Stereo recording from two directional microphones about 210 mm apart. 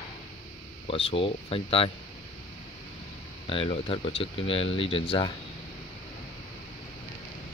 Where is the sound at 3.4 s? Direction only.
25° left (ahead or behind).